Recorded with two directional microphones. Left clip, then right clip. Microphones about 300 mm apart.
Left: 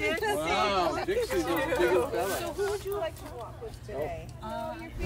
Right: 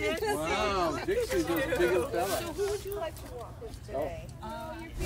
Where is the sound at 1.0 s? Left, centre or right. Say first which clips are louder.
Left 1 dB; left.